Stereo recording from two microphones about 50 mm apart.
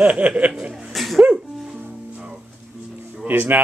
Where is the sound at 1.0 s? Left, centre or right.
Centre.